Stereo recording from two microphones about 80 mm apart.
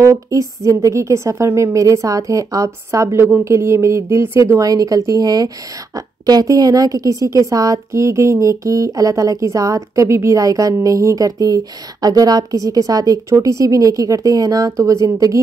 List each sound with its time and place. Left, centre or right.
0.0 s a woman's voice: right